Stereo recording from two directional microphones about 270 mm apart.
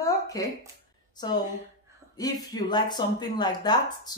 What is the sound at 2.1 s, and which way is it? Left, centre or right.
Speech, centre.